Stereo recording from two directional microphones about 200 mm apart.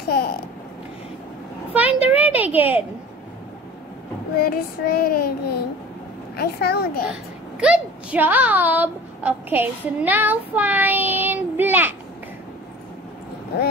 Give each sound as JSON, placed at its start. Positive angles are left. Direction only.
{"t": 0.1, "sound": "babbling", "side_deg": 50}
{"t": 1.7, "sound": "a child's voice", "side_deg": -10}
{"t": 4.4, "sound": "child singing", "side_deg": 50}
{"t": 7.6, "sound": "a woman's voice", "side_deg": -5}